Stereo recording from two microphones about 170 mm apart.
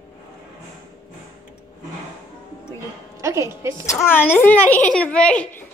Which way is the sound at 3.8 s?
15° left (ahead or behind).